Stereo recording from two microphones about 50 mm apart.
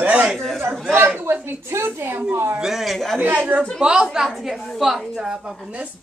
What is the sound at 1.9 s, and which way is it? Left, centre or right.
Speech, right.